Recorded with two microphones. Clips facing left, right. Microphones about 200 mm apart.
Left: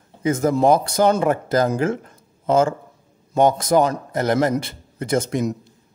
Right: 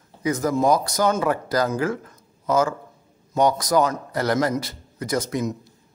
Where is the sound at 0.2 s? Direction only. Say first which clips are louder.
Left 3 dB; 25° left (ahead or behind).